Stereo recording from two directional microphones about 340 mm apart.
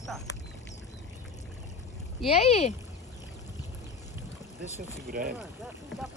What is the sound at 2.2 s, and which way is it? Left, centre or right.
Speech, centre.